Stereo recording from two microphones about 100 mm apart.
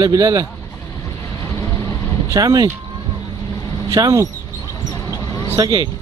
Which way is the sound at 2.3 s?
35° right (ahead or behind).